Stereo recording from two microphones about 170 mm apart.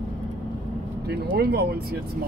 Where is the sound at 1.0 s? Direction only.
70° right (ahead or behind).